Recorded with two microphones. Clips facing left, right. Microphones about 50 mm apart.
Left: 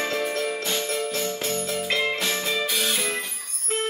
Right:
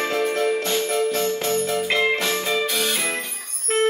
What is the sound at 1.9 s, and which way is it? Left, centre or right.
Music, centre.